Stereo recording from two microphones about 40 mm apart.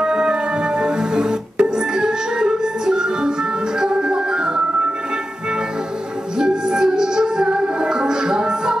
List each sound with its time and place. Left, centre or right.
0.0 s music: right
6.3 s music: centre